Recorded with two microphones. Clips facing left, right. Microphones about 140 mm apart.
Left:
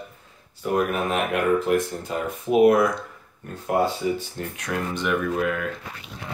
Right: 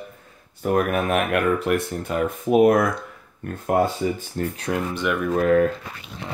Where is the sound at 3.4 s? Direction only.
60° right (ahead or behind).